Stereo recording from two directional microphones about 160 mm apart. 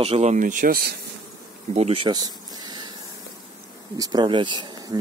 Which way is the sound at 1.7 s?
40° right (ahead or behind).